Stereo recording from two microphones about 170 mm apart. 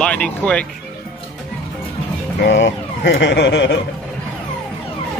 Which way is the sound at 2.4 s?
90° left.